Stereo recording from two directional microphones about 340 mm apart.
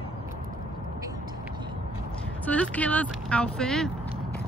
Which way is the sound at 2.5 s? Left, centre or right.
Centre.